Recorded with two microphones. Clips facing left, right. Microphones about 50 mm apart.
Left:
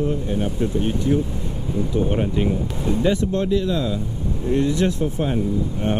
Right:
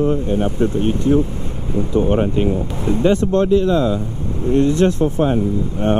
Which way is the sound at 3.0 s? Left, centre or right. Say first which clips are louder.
Right 6 dB; right.